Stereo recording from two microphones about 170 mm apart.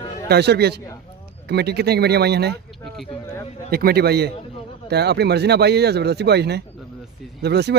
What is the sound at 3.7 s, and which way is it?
A man's voice, 65° right (ahead or behind).